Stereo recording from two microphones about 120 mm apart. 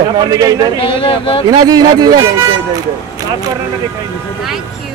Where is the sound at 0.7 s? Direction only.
50° left (ahead or behind).